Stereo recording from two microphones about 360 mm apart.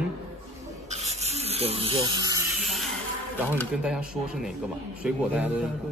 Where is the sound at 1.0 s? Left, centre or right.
Centre.